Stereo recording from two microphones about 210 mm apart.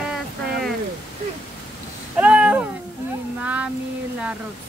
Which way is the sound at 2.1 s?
5° right (ahead or behind).